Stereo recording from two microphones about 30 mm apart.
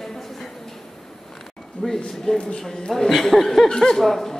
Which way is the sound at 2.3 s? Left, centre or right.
Left.